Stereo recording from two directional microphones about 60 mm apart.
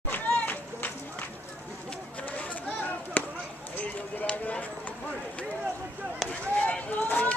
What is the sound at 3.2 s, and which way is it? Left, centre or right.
Chop, left.